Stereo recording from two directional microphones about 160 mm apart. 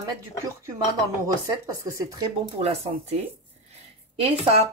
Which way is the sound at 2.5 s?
40° right (ahead or behind).